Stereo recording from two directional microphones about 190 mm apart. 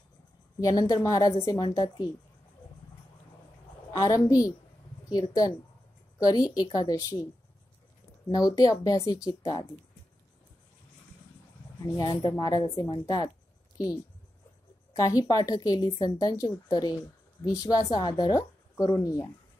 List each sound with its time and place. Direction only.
0.6 s a woman's voice: 20° left (ahead or behind)
3.9 s a woman's voice: 20° left (ahead or behind)
8.3 s a woman's voice: 20° left (ahead or behind)
12.0 s a woman's voice: 20° left (ahead or behind)
15.0 s a woman's voice: 20° left (ahead or behind)